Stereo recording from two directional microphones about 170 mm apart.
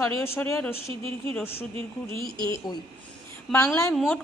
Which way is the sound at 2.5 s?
25° left (ahead or behind).